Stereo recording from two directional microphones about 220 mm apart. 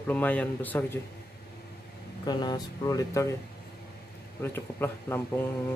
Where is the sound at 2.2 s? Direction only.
20° left (ahead or behind).